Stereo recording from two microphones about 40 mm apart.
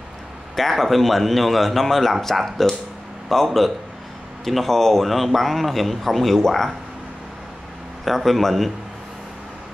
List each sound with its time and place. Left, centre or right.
0.6 s a man's voice: centre
8.0 s a man's voice: centre